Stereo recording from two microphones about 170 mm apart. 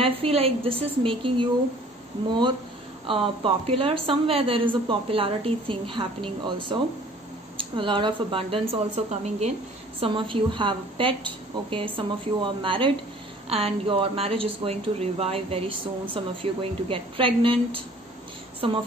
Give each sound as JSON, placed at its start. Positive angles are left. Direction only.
{"t": 0.0, "sound": "a woman's voice", "side_deg": -35}
{"t": 3.1, "sound": "a woman's voice", "side_deg": -35}